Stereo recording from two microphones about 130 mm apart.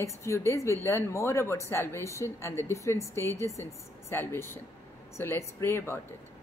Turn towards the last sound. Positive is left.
turn(degrees=15)  # may be behind; listen again after turning